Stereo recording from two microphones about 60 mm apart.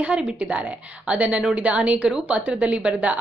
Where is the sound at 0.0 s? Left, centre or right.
Right.